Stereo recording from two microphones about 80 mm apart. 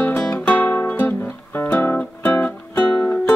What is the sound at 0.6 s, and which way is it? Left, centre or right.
Music, left.